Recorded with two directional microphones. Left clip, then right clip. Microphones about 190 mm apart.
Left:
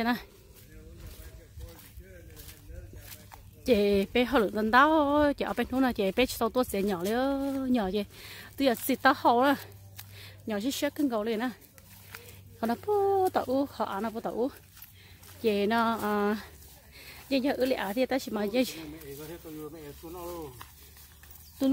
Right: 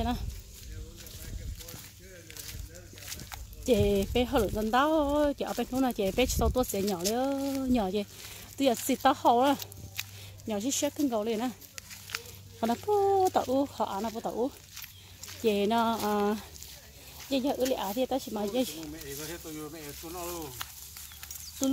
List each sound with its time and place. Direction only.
3.6 s speech: 10° left (ahead or behind)
6.9 s speech: 20° left (ahead or behind)
10.0 s a sound: 30° left (ahead or behind)
10.5 s speech: 5° left (ahead or behind)
12.5 s speech: centre (ahead or behind)
13.9 s speech: 15° left (ahead or behind)
15.4 s speech: centre (ahead or behind)
17.3 s speech: 40° left (ahead or behind)
18.1 s speech: 15° left (ahead or behind)
18.9 s speech: centre (ahead or behind)
19.6 s speech: 15° right (ahead or behind)